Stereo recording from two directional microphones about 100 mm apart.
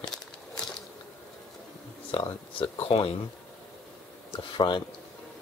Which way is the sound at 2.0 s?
70° left (ahead or behind).